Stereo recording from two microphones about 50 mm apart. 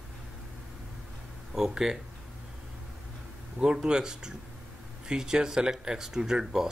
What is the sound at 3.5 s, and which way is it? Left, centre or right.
Speech, centre.